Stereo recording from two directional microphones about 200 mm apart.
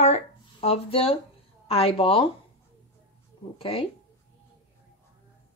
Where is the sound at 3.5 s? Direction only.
30° left (ahead or behind).